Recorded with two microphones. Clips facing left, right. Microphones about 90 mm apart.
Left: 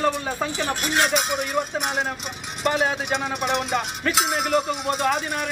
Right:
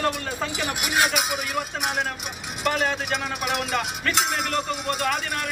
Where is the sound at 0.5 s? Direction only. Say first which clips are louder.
Even; 15° right (ahead or behind).